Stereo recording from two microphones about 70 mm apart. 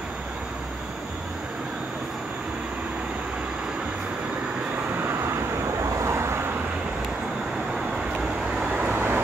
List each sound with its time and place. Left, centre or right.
4.9 s vehicle: right
5.9 s vehicle: right
8.5 s vehicle: centre